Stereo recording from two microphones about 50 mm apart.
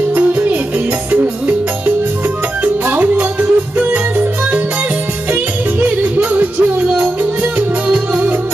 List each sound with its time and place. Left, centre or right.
0.1 s music: right
2.6 s music: right
5.8 s music: right